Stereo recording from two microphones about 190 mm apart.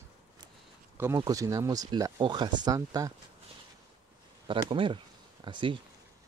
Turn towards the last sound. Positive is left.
turn(degrees=-25)  # may be behind; listen again after turning